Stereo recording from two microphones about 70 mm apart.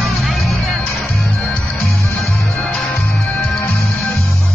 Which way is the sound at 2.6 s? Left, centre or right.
Centre.